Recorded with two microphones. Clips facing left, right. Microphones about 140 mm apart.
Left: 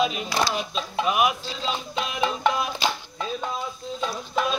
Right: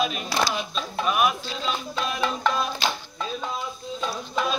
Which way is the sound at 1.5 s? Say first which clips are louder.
Even; 25° left (ahead or behind).